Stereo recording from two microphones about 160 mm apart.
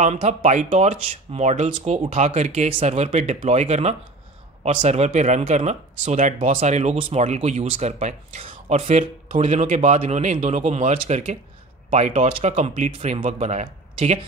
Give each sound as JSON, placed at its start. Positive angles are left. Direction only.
{"t": 0.0, "sound": "speech", "side_deg": -45}